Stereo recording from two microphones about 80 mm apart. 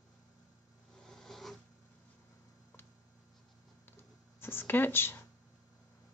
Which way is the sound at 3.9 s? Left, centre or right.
Left.